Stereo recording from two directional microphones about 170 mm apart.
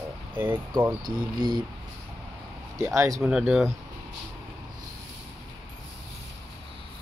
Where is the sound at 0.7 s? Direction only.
25° right (ahead or behind).